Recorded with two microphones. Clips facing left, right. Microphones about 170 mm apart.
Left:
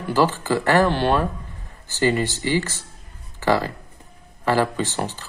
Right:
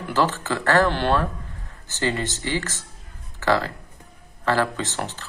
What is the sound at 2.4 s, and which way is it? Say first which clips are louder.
Speech: left 5 dB; 15° left (ahead or behind).